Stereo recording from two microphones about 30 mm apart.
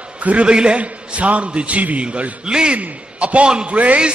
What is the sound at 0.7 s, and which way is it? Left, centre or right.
A man's voice, right.